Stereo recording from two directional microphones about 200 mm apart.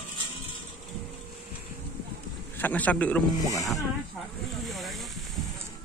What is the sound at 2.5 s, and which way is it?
Speech, 10° left (ahead or behind).